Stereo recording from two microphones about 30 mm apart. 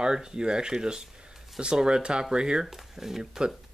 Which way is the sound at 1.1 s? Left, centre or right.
Right.